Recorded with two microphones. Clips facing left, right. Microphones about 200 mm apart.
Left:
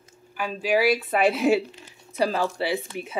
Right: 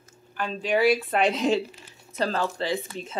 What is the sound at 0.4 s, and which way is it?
Speech, 10° left (ahead or behind).